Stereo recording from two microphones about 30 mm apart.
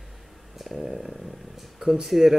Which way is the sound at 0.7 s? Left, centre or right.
Centre.